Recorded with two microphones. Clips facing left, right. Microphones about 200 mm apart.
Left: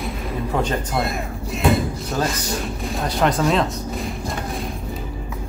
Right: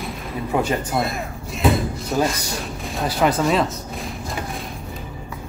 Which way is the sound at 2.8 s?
Centre (ahead or behind).